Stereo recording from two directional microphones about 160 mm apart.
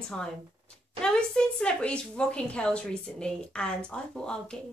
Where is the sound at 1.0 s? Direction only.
5° left (ahead or behind).